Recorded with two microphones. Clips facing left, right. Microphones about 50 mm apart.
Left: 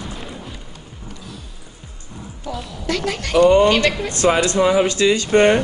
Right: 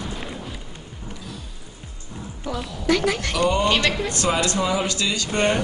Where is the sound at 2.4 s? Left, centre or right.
Centre.